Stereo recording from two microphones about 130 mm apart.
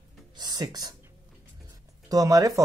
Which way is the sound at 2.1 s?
25° right (ahead or behind).